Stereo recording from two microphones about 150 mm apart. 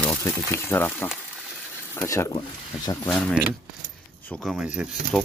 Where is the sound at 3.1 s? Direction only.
5° left (ahead or behind).